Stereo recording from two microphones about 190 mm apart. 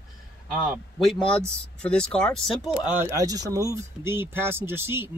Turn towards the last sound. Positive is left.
turn(degrees=-10)  # may be behind; listen again after turning